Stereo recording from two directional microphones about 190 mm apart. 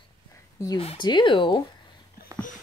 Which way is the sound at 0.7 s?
25° left (ahead or behind).